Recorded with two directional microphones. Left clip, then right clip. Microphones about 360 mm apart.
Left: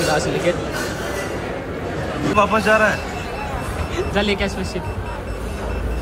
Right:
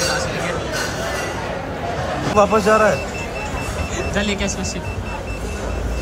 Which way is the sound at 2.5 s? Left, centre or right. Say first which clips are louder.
Right 1 dB; right.